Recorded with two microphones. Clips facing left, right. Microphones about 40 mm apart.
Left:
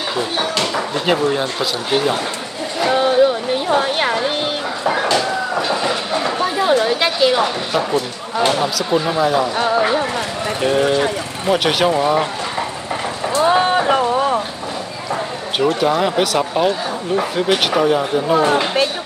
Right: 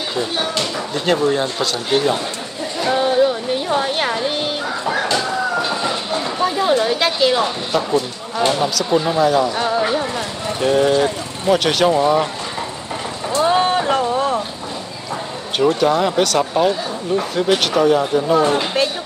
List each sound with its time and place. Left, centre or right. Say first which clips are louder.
0.9 s speech: right 1 dB; centre
5.0 s a sound: left 1 dB; left
6.4 s a sound: right 3 dB; centre
6.8 s speech: left 1 dB; centre
7.9 s speech: even; left
8.6 s speech: even; centre
9.9 s speech: left 2 dB; left
11.5 s speech: even; centre
13.4 s vehicle: left 1 dB; centre
15.9 s speech: even; centre
16.6 s speech: even; left
18.5 s speech: left 2 dB; left